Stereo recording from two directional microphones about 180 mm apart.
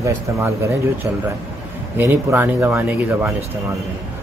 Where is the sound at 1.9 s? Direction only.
10° right (ahead or behind).